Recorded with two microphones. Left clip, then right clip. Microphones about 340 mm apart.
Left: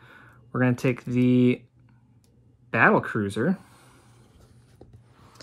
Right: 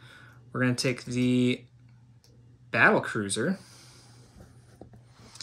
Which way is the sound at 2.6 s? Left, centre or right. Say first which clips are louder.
Left 2 dB; centre.